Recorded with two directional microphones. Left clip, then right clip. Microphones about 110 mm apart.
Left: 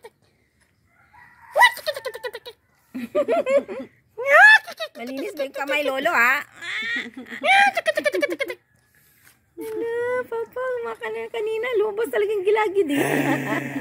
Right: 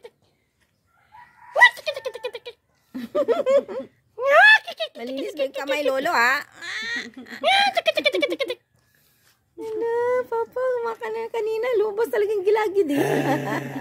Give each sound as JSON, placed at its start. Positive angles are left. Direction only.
{"t": 1.5, "sound": "a sound", "side_deg": -15}
{"t": 2.9, "sound": "a child's voice", "side_deg": -50}
{"t": 9.8, "sound": "speech", "side_deg": -40}